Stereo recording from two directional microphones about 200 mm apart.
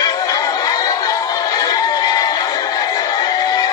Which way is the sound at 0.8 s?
15° left (ahead or behind).